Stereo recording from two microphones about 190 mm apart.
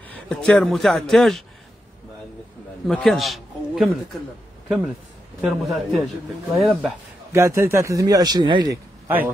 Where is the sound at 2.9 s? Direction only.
Centre (ahead or behind).